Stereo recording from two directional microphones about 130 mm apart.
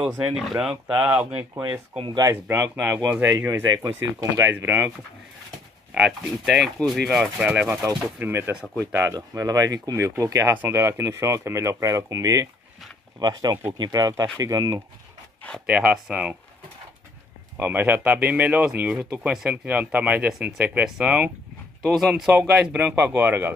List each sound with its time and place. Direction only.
0.1 s speech: 5° right (ahead or behind)
1.5 s speech: 30° right (ahead or behind)
2.4 s speech: 15° right (ahead or behind)
4.6 s speech: 15° right (ahead or behind)
5.9 s speech: centre (ahead or behind)
7.8 s speech: 20° right (ahead or behind)
15.6 s speech: 5° right (ahead or behind)
17.6 s speech: 15° right (ahead or behind)